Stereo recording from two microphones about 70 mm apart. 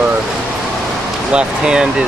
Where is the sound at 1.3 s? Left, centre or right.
Centre.